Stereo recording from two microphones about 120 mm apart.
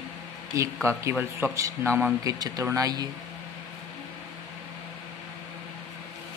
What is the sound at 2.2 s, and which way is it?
Speech, 35° right (ahead or behind).